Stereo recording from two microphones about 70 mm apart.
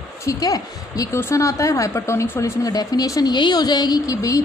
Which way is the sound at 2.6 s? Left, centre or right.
Left.